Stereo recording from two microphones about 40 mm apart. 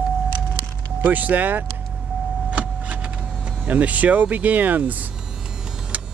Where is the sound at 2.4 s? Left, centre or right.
Right.